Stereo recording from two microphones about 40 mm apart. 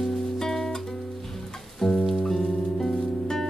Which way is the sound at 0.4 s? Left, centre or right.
Centre.